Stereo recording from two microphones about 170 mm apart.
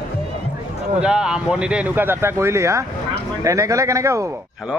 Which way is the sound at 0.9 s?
5° right (ahead or behind).